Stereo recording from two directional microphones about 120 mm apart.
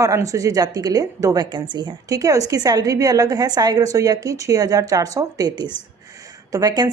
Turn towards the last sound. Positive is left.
turn(degrees=-35)  # may be behind; listen again after turning